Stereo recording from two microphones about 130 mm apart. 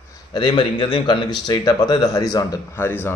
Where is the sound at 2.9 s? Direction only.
15° left (ahead or behind).